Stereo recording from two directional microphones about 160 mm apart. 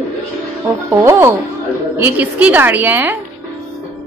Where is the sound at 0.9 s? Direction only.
15° right (ahead or behind).